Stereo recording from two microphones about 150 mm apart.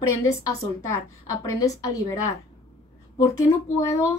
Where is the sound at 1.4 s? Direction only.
25° left (ahead or behind).